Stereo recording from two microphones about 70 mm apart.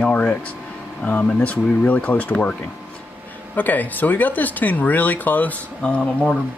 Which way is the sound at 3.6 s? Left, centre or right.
Left.